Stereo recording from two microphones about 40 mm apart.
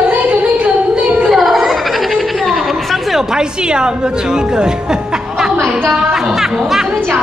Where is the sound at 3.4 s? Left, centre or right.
Right.